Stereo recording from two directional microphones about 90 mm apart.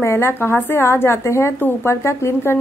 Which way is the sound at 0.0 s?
30° left (ahead or behind).